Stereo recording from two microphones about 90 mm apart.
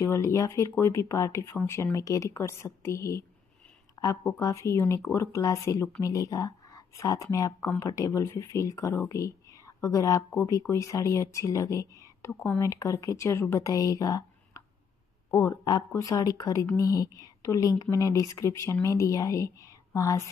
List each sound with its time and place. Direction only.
0.0 s speech: 35° left (ahead or behind)